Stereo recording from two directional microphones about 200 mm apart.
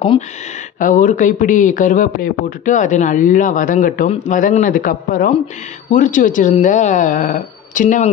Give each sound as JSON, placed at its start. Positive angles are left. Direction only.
{"t": 0.7, "sound": "speech", "side_deg": 40}